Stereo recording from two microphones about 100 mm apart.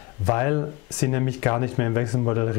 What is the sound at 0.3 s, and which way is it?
Speech, 20° left (ahead or behind).